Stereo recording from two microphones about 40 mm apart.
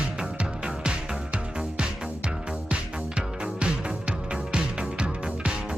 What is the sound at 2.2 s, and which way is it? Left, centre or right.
Music, right.